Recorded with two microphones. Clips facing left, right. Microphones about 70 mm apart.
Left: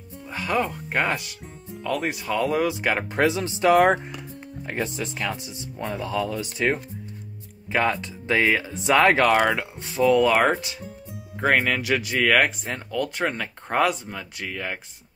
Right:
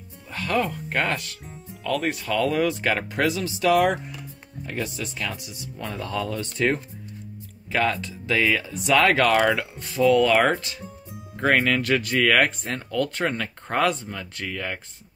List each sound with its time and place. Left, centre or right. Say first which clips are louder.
0.3 s speech: even; centre; by 5.9 s left
5.9 s speech: left 2 dB; centre
7.7 s speech: left 1 dB; left
9.4 s speech: right 1 dB; centre
9.8 s speech: even; left
10.0 s speech: even; centre